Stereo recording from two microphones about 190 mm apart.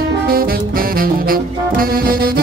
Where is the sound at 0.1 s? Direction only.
50° right (ahead or behind).